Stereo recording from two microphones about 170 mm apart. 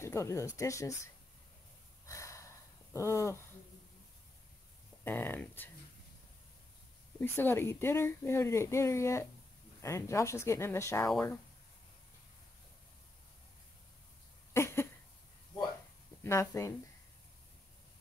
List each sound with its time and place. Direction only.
0.0 s speech: 15° left (ahead or behind)
2.0 s a sound: 20° left (ahead or behind)
5.0 s speech: 10° left (ahead or behind)
7.2 s speech: 10° left (ahead or behind)
14.5 s a sound: 15° left (ahead or behind)
16.3 s speech: 15° left (ahead or behind)